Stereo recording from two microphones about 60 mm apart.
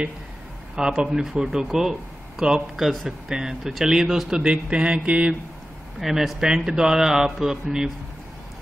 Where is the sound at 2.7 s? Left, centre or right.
Centre.